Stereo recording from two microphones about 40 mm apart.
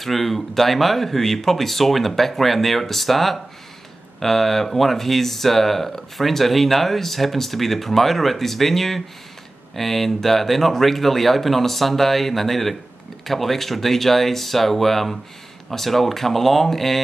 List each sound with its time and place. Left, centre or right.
0.0 s speech: centre